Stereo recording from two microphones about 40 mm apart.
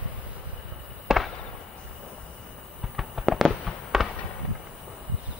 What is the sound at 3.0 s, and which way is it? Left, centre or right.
Fireworks, centre.